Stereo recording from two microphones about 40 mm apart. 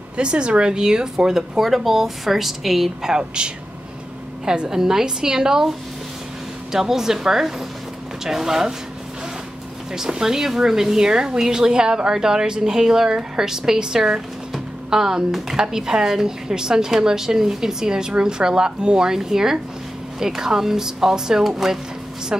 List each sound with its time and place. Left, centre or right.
0.2 s speech: right
6.7 s speech: centre
9.9 s speech: centre
22.3 s a woman's voice: centre